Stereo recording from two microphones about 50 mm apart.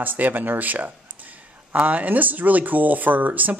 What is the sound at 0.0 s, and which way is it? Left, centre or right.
Speech, right.